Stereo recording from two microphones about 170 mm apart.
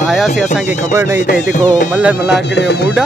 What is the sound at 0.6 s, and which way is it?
Music, 45° left (ahead or behind).